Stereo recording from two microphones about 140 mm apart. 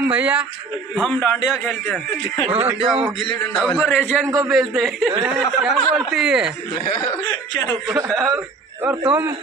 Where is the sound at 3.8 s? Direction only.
Centre (ahead or behind).